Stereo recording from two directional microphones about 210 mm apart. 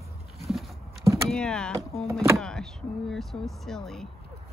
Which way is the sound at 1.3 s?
5° left (ahead or behind).